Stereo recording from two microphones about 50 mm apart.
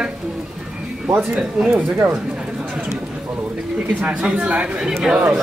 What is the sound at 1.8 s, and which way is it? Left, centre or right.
Speech, right.